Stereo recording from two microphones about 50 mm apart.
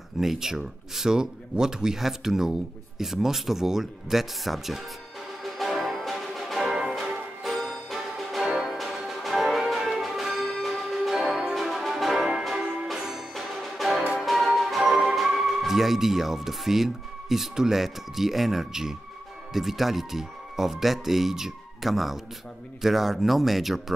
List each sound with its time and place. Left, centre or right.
0.2 s speech: centre
5.7 s music: centre
6.7 s music: centre
7.4 s music: centre
14.2 s speech: centre